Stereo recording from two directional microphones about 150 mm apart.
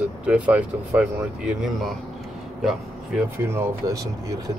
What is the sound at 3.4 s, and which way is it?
Speech, 20° right (ahead or behind).